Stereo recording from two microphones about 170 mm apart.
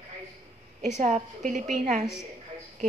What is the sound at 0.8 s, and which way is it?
A woman's voice, 45° right (ahead or behind).